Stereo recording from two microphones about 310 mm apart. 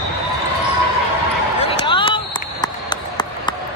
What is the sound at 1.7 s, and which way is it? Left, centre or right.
Run, centre.